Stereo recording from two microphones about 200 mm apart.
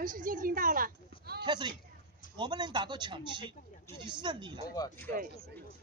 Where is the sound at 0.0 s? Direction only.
40° right (ahead or behind).